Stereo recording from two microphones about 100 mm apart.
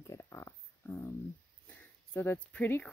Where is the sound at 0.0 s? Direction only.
30° left (ahead or behind).